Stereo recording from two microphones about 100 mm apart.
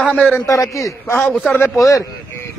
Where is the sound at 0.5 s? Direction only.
30° left (ahead or behind).